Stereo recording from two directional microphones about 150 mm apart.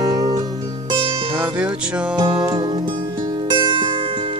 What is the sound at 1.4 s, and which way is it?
Music, 5° right (ahead or behind).